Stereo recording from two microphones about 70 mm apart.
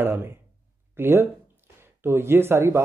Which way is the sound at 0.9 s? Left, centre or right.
Right.